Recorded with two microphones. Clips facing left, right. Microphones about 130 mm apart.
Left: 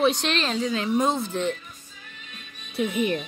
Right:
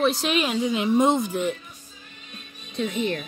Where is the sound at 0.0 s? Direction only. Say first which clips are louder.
Right 1 dB; 5° right (ahead or behind).